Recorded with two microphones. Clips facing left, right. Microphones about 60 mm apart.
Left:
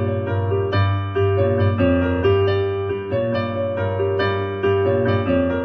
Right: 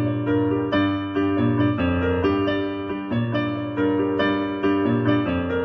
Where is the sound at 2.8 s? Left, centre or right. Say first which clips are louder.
Left 4 dB; centre.